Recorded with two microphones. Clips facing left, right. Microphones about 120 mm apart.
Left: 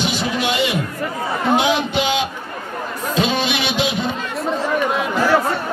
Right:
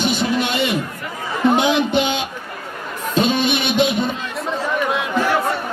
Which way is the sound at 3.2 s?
50° right (ahead or behind).